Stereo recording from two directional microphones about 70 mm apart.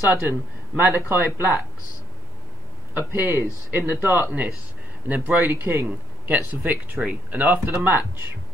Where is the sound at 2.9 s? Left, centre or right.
Right.